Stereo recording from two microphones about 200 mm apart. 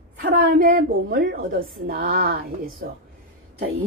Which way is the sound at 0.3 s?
45° right (ahead or behind).